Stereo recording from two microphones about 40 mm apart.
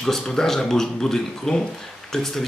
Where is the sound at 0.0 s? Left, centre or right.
Centre.